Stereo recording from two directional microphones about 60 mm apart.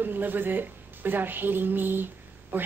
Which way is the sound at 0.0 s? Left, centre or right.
Right.